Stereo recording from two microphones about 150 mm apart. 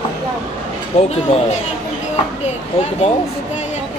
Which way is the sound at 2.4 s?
50° left (ahead or behind).